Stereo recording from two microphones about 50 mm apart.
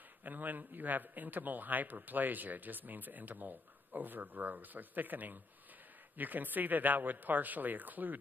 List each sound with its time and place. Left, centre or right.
0.2 s a man's voice: right